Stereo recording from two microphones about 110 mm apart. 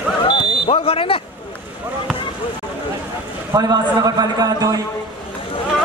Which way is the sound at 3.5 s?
35° right (ahead or behind).